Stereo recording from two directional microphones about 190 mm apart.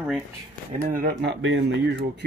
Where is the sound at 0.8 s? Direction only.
45° right (ahead or behind); by 1.9 s 65° right (ahead or behind).